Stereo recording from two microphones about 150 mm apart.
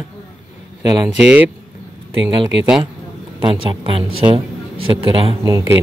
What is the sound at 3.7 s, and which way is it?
A woman's voice, 35° right (ahead or behind).